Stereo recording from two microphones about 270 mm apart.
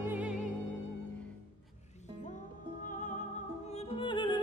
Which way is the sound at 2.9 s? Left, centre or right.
Left.